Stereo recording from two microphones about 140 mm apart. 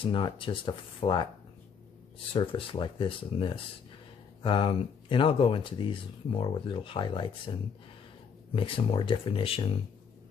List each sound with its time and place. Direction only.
0.0 s speech: 40° left (ahead or behind)
2.3 s speech: 40° left (ahead or behind)